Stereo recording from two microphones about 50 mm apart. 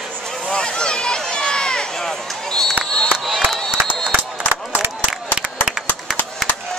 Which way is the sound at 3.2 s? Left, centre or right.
Centre.